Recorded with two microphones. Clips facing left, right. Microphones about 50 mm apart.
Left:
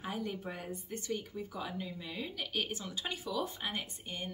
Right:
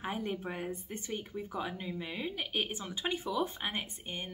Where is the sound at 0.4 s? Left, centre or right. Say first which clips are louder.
Right 3 dB; right.